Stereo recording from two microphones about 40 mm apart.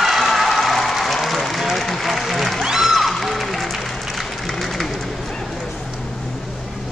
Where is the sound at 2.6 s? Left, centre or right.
Centre.